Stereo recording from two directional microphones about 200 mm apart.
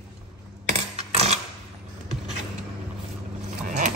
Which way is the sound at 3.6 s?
40° right (ahead or behind).